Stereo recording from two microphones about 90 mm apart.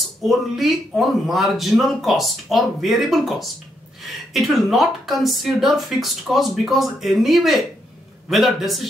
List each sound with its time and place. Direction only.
0.2 s speech: centre (ahead or behind)